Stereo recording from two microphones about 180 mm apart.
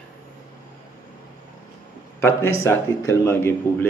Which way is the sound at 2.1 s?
15° left (ahead or behind).